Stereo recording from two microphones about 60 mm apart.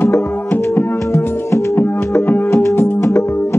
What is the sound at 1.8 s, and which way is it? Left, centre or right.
Music, left.